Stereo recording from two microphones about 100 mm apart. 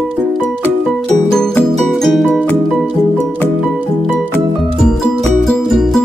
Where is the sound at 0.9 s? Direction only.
5° left (ahead or behind).